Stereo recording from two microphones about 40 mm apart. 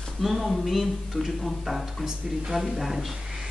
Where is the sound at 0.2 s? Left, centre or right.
Centre.